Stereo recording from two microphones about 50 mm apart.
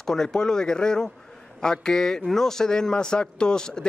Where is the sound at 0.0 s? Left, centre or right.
Centre.